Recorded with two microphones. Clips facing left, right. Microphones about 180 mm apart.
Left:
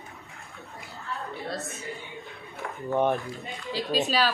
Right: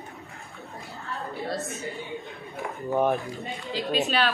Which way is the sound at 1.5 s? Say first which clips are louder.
Right 3 dB; centre (ahead or behind).